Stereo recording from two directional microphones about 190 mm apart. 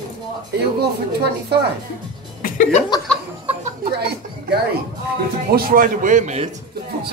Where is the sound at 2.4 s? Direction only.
40° left (ahead or behind).